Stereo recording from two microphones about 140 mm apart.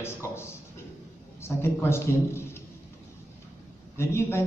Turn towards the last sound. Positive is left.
turn(degrees=20)  # may be behind; listen again after turning